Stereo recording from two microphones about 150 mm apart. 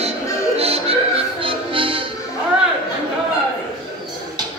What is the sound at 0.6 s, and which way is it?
Music, 40° right (ahead or behind).